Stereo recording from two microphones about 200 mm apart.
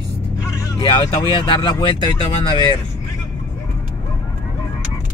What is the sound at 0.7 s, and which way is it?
Speech, 25° left (ahead or behind).